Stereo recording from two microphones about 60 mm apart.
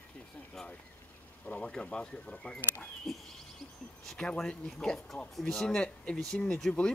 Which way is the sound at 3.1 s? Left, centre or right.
Centre.